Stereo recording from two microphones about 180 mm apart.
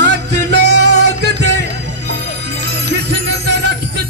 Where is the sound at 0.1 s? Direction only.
75° right (ahead or behind).